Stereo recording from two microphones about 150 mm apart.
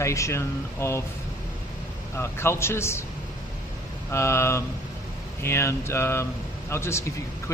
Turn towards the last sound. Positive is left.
turn(degrees=20)  # may be behind; listen again after turning